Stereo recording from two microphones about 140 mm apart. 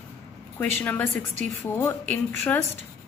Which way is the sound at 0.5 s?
15° left (ahead or behind).